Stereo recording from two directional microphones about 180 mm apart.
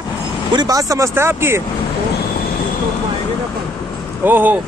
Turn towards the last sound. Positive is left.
turn(degrees=-10)  # may be behind; listen again after turning